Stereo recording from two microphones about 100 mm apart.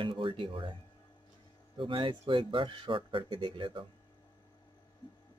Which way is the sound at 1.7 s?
55° right (ahead or behind).